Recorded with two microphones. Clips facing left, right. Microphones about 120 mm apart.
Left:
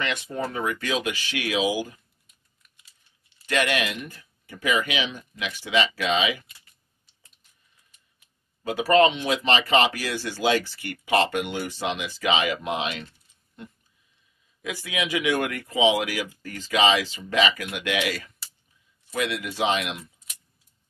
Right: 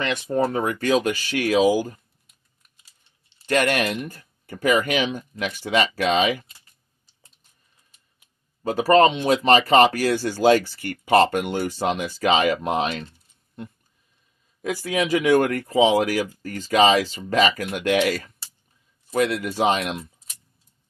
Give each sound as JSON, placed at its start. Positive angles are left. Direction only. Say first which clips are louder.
{"t": 0.0, "sound": "speech", "louder": "right 7 dB", "side_deg": -40}
{"t": 2.8, "sound": "typing", "louder": "even", "side_deg": -30}
{"t": 3.4, "sound": "speech", "louder": "right 4 dB", "side_deg": -45}
{"t": 8.6, "sound": "speech", "louder": "right 3 dB", "side_deg": -40}
{"t": 14.6, "sound": "speech", "louder": "right 6 dB", "side_deg": -40}